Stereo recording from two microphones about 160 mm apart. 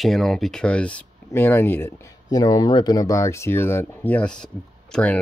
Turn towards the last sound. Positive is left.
turn(degrees=5)  # may be behind; listen again after turning